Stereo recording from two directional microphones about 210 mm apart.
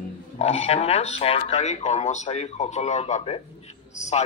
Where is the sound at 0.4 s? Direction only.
30° left (ahead or behind).